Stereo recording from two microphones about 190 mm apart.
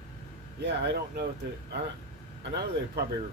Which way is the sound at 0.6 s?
70° right (ahead or behind).